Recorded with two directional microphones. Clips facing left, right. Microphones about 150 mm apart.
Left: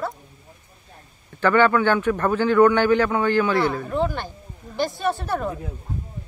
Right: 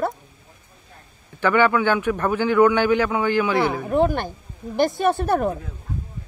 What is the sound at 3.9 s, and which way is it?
Speech, 55° right (ahead or behind).